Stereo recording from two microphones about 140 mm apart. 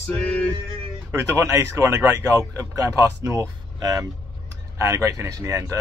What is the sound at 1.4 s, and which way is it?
Speech, 20° right (ahead or behind).